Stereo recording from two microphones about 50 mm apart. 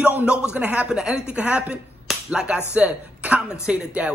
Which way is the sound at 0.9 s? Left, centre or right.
Centre.